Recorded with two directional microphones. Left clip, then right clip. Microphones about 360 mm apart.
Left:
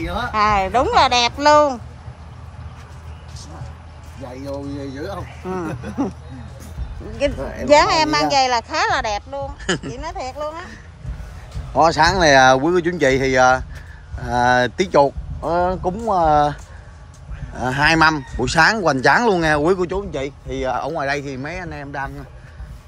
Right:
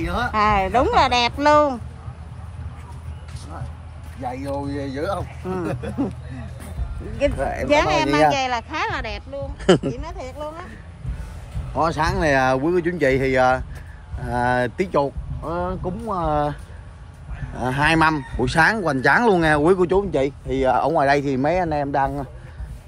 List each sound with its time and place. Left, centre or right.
0.0 s speech: centre
5.0 s speech: centre
7.6 s speech: centre
9.6 s speech: centre
9.9 s speech: left
11.7 s speech: centre
17.6 s speech: centre